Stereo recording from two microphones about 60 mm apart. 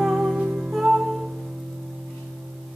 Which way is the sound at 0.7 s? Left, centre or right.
Centre.